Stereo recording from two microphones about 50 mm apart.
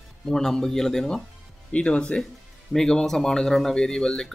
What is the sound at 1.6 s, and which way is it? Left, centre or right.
Speech, left.